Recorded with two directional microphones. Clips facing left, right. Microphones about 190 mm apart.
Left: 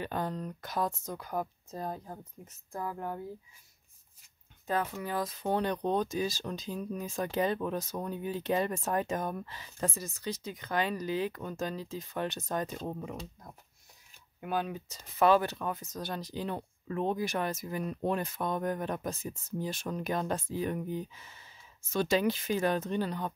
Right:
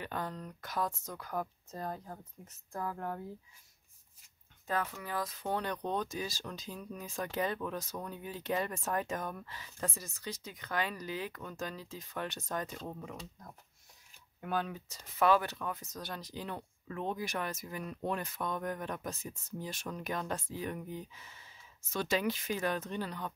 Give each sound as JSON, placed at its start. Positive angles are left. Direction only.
{"t": 0.0, "sound": "speech", "side_deg": 25}
{"t": 4.6, "sound": "speech", "side_deg": 25}
{"t": 14.4, "sound": "speech", "side_deg": 15}